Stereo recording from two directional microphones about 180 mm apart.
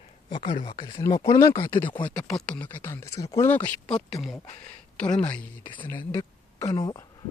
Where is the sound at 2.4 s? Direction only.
5° left (ahead or behind).